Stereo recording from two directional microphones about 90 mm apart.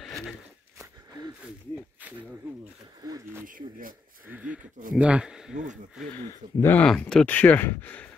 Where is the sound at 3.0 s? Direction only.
45° right (ahead or behind).